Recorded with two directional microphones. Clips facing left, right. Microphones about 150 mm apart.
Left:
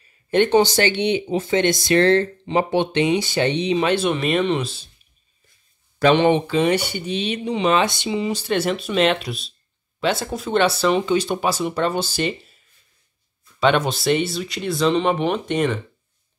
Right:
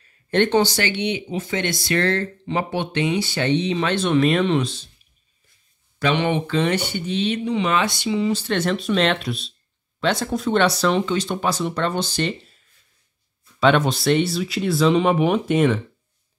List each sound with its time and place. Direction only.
0.3 s speech: 10° left (ahead or behind)
0.7 s speech: 30° left (ahead or behind); by 4.8 s 5° left (ahead or behind)
5.9 s speech: 35° left (ahead or behind)
6.4 s speech: 10° left (ahead or behind)
13.6 s speech: centre (ahead or behind)